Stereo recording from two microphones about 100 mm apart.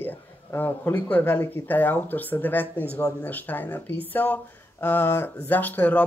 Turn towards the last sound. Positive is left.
turn(degrees=15)  # may be behind; listen again after turning